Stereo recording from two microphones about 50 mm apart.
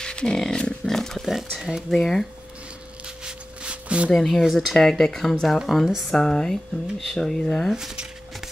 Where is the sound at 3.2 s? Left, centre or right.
Right.